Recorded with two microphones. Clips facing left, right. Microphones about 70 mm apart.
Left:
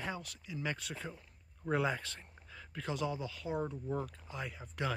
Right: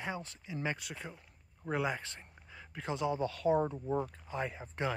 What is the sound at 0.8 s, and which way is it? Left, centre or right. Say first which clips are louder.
Speech: left 1 dB; centre.